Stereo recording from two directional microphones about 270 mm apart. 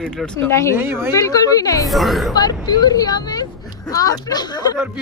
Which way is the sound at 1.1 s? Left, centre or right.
Centre.